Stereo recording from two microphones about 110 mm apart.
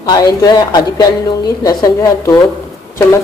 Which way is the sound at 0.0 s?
40° left (ahead or behind).